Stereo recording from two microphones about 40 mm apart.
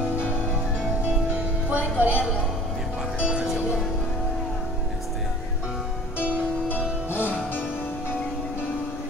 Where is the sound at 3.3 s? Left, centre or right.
Centre.